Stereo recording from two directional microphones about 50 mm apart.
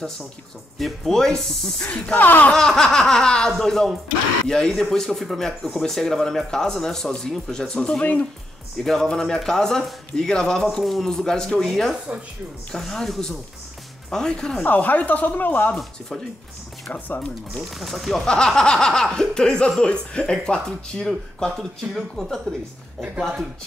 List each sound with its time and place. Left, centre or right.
0.7 s speech: centre
1.8 s speech: left
2.5 s speech: centre
8.0 s speech: left
8.8 s speech: centre
14.6 s speech: left
15.7 s speech: centre
17.6 s speech: centre
18.2 s speech: centre